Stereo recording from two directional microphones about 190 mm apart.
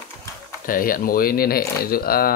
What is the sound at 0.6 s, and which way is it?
Speech, 50° left (ahead or behind).